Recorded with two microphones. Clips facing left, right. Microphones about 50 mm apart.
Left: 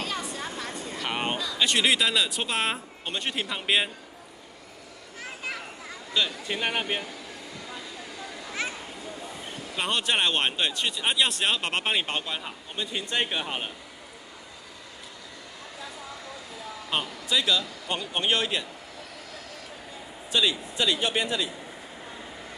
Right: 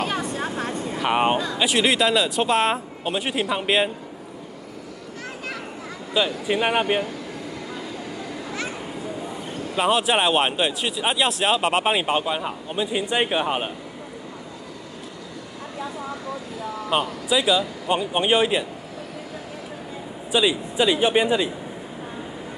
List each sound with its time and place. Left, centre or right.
0.0 s vehicle: right
0.9 s speech: centre
1.6 s a man's voice: centre
5.2 s vehicle: centre
6.1 s speech: centre
9.8 s speech: centre
16.9 s speech: centre
20.2 s speech: centre